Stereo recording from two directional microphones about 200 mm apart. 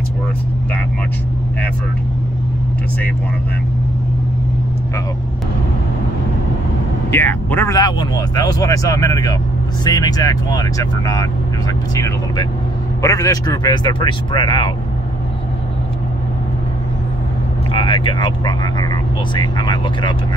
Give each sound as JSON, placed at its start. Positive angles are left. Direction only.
{"t": 7.1, "sound": "speech", "side_deg": 10}
{"t": 17.7, "sound": "speech", "side_deg": 25}